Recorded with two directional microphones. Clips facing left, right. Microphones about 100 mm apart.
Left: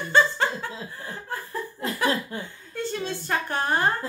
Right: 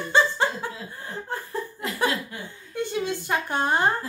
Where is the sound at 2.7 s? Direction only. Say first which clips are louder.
Right 2 dB; 15° right (ahead or behind).